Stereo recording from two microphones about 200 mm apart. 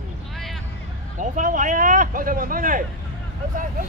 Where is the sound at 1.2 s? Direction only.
40° right (ahead or behind).